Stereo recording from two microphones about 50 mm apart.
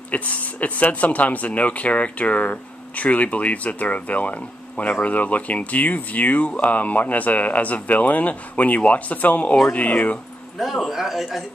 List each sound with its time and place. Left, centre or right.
0.1 s speech: left
10.6 s a man's voice: centre